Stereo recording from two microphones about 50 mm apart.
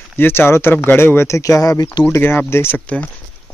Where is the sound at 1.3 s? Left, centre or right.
Left.